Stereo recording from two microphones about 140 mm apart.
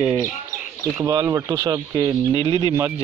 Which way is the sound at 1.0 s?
25° right (ahead or behind).